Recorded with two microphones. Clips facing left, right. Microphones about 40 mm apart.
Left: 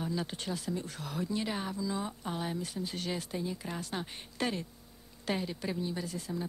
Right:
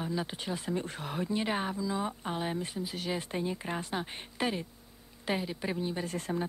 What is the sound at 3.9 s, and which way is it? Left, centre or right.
Speech, centre.